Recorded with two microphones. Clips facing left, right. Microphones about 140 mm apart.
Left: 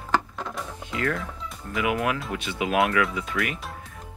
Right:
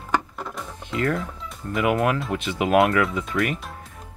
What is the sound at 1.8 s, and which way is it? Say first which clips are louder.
Speech: right 4 dB; 40° right (ahead or behind).